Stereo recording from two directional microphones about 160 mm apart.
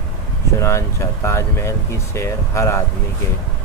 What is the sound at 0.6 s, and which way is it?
Speech, 15° left (ahead or behind).